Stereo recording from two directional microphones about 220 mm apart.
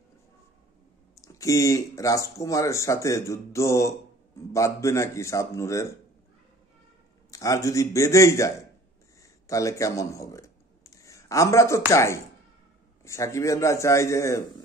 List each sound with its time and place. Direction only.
1.2 s speech: 15° left (ahead or behind)
7.2 s speech: 15° left (ahead or behind)